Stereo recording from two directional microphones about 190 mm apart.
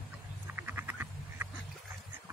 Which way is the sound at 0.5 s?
10° right (ahead or behind).